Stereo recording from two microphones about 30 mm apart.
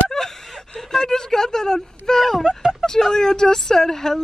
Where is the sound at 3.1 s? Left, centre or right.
Centre.